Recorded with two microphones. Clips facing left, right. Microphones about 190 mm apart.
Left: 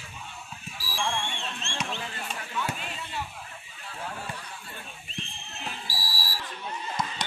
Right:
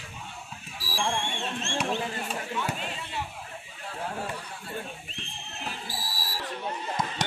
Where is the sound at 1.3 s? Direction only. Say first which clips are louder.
Right 5 dB; 50° right (ahead or behind).